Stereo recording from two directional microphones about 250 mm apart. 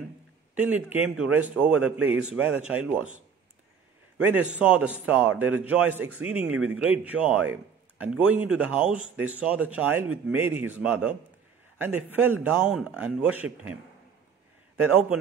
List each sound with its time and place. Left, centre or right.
0.6 s speech: centre
4.2 s speech: centre
14.8 s speech: centre